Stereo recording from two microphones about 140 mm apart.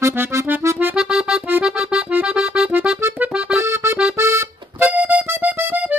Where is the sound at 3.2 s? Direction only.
5° right (ahead or behind).